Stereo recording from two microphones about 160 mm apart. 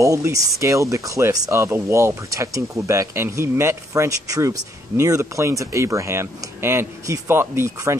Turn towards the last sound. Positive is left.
turn(degrees=-20)  # may be behind; listen again after turning